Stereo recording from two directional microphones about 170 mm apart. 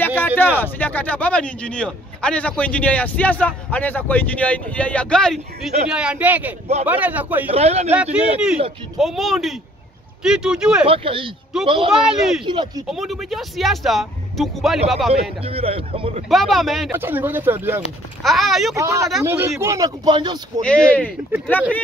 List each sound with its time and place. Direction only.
0.0 s a sound: 10° left (ahead or behind)
0.4 s speech: 10° left (ahead or behind); by 7.5 s 10° right (ahead or behind)
7.5 s speech: 40° right (ahead or behind)
7.9 s speech: 5° right (ahead or behind)
10.9 s speech: 30° right (ahead or behind)
11.9 s speech: 5° right (ahead or behind)
12.4 s speech: 25° right (ahead or behind)
12.8 s speech: centre (ahead or behind)
15.4 s speech: 35° right (ahead or behind)
16.3 s speech: centre (ahead or behind)
16.9 s speech: 10° right (ahead or behind)
18.2 s speech: centre (ahead or behind)
18.8 s speech: 20° right (ahead or behind)
20.6 s speech: 5° left (ahead or behind)